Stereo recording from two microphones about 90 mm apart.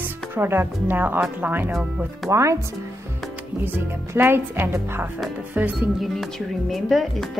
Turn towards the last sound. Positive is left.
turn(degrees=0)  # may be behind; listen again after turning